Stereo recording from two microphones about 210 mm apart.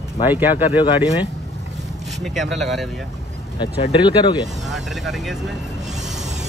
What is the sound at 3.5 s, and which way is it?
Speech, 20° left (ahead or behind).